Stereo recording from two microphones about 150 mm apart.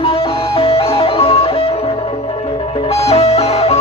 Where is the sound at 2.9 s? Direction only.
45° left (ahead or behind).